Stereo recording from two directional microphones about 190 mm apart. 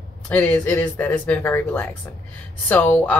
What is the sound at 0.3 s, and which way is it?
A woman's voice, 10° left (ahead or behind).